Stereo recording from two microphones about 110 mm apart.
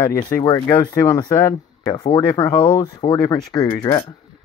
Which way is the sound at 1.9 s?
45° left (ahead or behind).